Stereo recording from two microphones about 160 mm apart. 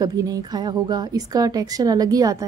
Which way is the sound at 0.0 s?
25° right (ahead or behind).